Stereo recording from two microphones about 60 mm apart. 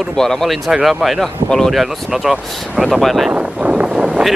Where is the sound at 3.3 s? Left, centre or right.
Centre.